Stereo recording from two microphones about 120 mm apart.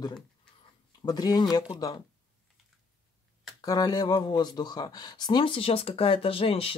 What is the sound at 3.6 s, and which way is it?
Speech, 35° left (ahead or behind).